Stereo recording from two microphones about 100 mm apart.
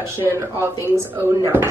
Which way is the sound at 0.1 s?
25° right (ahead or behind).